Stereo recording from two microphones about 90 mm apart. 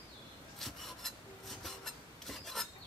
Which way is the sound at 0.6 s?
5° left (ahead or behind).